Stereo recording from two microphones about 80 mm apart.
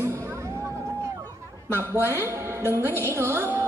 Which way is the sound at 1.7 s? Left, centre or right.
Right.